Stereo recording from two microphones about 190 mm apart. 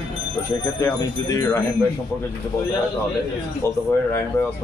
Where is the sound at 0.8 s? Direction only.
15° left (ahead or behind).